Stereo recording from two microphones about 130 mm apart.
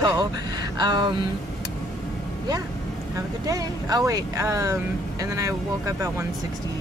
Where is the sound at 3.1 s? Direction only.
30° right (ahead or behind).